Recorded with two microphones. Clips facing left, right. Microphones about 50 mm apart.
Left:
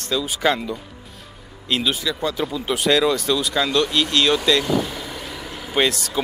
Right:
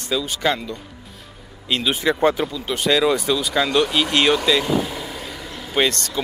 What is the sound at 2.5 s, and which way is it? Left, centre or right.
Speech, centre.